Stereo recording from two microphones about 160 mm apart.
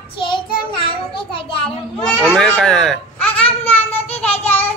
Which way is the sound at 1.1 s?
35° left (ahead or behind).